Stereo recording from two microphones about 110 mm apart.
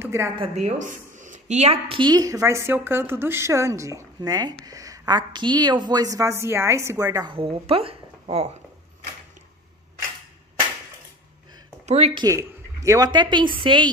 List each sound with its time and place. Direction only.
0.0 s a sound: 25° right (ahead or behind)
0.6 s a woman's voice: 90° right
1.5 s a woman's voice: 75° right (ahead or behind)
2.0 s speech: 40° right (ahead or behind)
7.2 s a woman's voice: 55° right (ahead or behind)
11.8 s a sound: 85° right
12.3 s speech: 30° right (ahead or behind)
13.1 s a woman's voice: 45° right (ahead or behind)